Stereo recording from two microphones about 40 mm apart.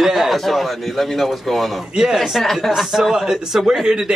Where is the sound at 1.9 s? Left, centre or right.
Centre.